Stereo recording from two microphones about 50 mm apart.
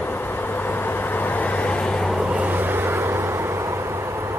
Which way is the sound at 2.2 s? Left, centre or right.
Right.